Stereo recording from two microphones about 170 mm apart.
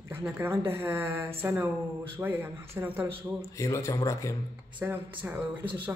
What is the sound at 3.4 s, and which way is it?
Speech, 20° left (ahead or behind).